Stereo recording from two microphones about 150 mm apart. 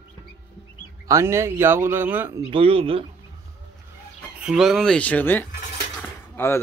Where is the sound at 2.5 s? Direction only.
40° right (ahead or behind).